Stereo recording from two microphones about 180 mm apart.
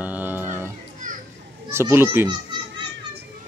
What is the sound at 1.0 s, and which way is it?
Children playing, 45° right (ahead or behind).